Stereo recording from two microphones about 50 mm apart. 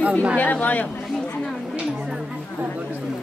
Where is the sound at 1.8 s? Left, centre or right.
Right.